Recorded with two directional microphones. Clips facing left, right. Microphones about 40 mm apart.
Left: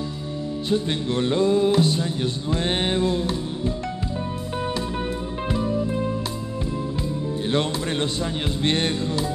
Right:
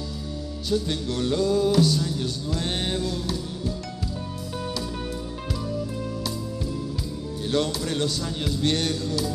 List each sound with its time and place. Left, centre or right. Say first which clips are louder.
0.7 s music: left 2 dB; left
5.5 s music: left 7 dB; left
7.5 s music: even; left